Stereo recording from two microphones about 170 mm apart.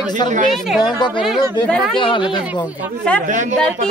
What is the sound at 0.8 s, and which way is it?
Speech, 25° left (ahead or behind).